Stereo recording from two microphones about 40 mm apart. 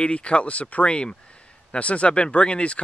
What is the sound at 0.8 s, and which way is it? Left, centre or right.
Speech, left.